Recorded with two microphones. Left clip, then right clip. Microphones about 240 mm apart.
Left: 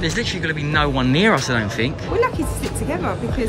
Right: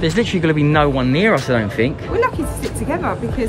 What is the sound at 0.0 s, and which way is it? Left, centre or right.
Speech, centre.